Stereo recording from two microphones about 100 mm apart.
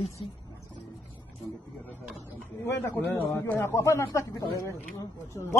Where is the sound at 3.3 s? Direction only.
25° left (ahead or behind).